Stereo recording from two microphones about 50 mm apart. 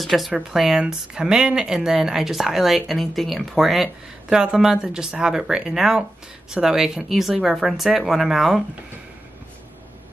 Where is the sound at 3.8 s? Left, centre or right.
Centre.